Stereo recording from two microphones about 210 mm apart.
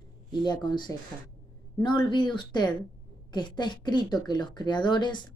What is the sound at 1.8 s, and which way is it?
A woman's voice, 20° left (ahead or behind).